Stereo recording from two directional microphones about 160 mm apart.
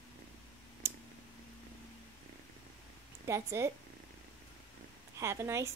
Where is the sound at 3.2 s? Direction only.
20° right (ahead or behind).